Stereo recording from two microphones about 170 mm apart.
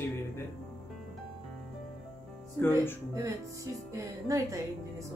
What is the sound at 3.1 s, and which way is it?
Music, 20° right (ahead or behind).